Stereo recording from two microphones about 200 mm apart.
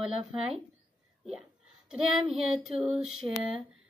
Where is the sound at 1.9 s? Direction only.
Centre (ahead or behind).